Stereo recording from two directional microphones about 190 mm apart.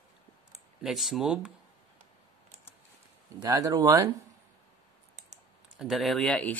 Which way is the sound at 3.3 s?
20° right (ahead or behind).